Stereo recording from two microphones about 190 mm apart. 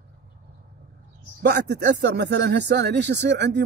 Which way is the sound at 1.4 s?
60° right (ahead or behind).